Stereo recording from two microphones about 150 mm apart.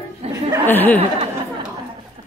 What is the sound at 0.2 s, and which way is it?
Chuckle, 45° right (ahead or behind).